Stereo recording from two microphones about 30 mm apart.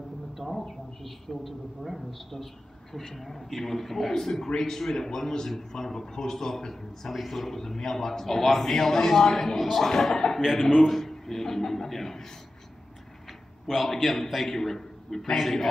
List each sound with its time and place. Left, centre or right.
0.4 s a sound: centre
1.8 s a man's voice: centre
10.4 s a man's voice: centre
10.9 s a man's voice: centre
13.7 s a man's voice: centre